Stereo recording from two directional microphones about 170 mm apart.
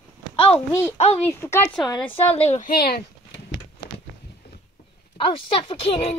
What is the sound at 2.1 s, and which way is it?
Speech, 35° left (ahead or behind).